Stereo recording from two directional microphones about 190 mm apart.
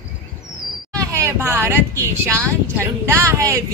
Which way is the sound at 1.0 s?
15° right (ahead or behind).